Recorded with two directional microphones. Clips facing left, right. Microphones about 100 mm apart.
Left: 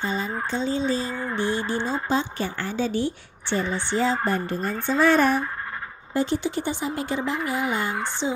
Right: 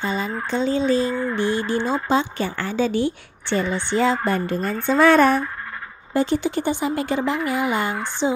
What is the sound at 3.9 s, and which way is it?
Speech, 80° right.